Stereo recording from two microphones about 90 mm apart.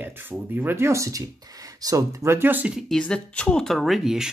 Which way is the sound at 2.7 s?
5° left (ahead or behind).